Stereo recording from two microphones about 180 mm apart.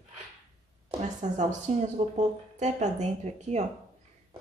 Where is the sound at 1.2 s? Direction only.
40° right (ahead or behind).